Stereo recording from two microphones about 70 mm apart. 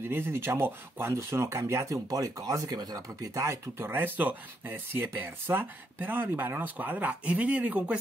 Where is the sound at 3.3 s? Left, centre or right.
Right.